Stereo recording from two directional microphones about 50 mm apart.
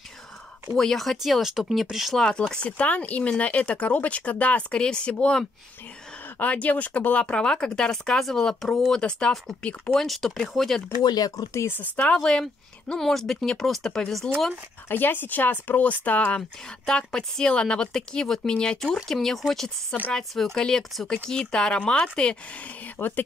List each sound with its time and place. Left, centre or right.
0.7 s speech: centre
1.1 s speech: centre
2.5 s speech: left
6.4 s speech: left; by 9.0 s centre
9.6 s speech: left
9.9 s speech: centre
12.0 s speech: centre
14.9 s speech: left
16.8 s speech: centre
19.0 s speech: centre
22.9 s speech: left